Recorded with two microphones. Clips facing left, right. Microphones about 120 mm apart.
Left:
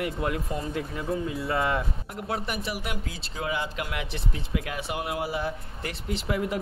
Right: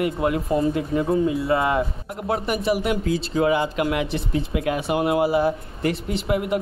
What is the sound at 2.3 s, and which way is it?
Speech, 50° right (ahead or behind).